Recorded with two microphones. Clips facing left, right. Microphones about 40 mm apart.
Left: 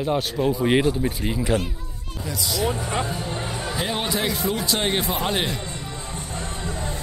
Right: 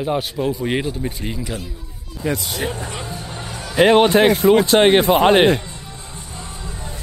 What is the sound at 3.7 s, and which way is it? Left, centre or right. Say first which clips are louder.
A man's voice: right 15 dB; right.